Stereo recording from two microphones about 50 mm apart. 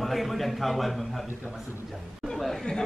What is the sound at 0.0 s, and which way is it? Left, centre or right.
A man's voice, centre.